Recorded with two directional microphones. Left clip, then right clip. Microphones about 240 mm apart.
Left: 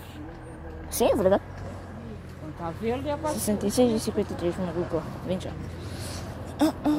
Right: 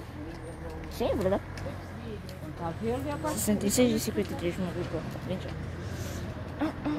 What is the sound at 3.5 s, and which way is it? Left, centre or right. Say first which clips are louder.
Speech: left 3 dB; centre.